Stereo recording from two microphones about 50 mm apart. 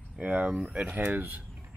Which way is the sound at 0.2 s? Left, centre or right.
Right.